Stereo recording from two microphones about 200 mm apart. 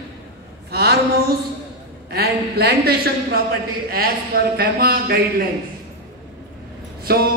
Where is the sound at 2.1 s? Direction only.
55° right (ahead or behind).